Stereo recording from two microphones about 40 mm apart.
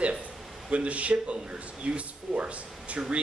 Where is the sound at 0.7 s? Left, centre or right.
Right.